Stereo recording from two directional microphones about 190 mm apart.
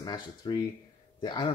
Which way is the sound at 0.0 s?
20° left (ahead or behind).